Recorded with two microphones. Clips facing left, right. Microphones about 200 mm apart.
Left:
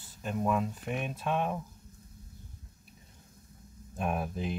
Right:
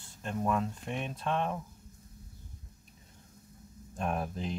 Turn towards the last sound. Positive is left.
turn(degrees=5)  # may be behind; listen again after turning